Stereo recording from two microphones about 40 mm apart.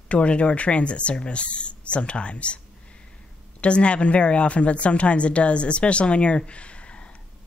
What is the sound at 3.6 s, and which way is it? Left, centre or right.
A woman's voice, left.